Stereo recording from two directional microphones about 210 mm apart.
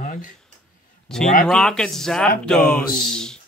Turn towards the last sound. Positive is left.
turn(degrees=5)  # may be behind; listen again after turning